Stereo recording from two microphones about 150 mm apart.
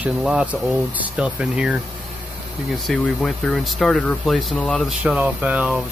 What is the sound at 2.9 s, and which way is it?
Speech, 5° left (ahead or behind).